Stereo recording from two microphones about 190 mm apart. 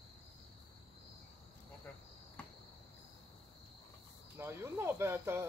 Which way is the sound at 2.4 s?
5° left (ahead or behind).